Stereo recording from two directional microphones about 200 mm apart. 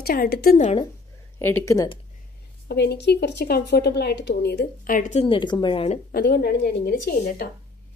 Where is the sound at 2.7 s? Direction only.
55° left (ahead or behind); by 6.0 s 30° left (ahead or behind).